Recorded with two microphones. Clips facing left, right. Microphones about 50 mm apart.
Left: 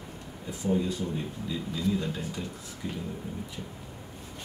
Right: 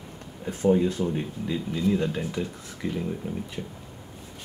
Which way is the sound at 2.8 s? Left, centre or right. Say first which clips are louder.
Right 6 dB; right.